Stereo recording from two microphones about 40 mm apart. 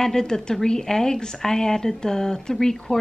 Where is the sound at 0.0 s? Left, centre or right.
Centre.